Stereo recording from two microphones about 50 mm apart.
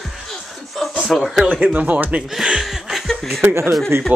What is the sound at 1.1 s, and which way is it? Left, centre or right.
Cough, centre.